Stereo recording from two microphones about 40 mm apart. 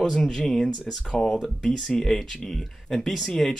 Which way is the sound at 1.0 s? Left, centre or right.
Centre.